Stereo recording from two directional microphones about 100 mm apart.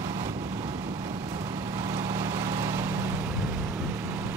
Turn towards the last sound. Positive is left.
turn(degrees=-25)  # may be behind; listen again after turning